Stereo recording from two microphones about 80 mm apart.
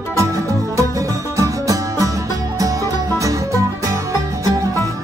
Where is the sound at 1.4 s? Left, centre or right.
Right.